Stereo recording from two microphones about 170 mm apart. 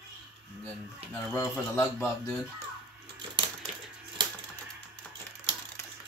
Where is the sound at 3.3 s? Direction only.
30° right (ahead or behind).